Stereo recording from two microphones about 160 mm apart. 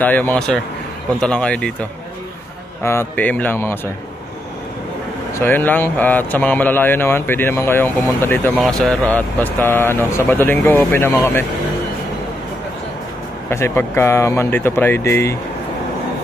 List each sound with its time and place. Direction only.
0.0 s speech: 10° left (ahead or behind)
5.3 s speech: 15° left (ahead or behind)
8.5 s speech: centre (ahead or behind)
13.5 s speech: 15° left (ahead or behind)